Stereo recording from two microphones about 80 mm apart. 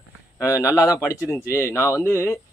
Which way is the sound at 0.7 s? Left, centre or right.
Left.